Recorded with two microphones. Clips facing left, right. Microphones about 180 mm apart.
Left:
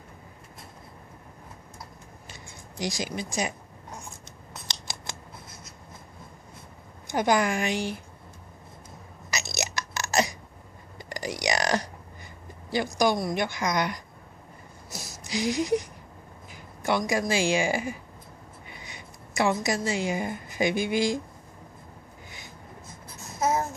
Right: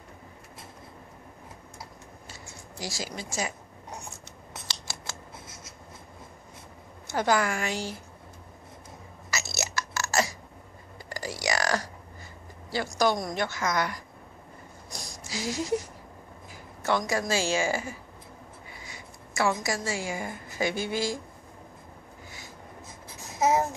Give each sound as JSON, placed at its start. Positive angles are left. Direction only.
{"t": 2.8, "sound": "speech", "side_deg": 20}
{"t": 4.6, "sound": "scissors", "side_deg": 15}
{"t": 7.1, "sound": "a woman's voice", "side_deg": 15}
{"t": 9.3, "sound": "a sound", "side_deg": 20}
{"t": 12.7, "sound": "a woman's voice", "side_deg": 15}
{"t": 14.9, "sound": "a sound", "side_deg": 5}
{"t": 15.2, "sound": "a woman's voice", "side_deg": 20}